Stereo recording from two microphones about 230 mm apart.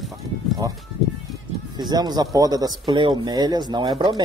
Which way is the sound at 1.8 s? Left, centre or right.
Centre.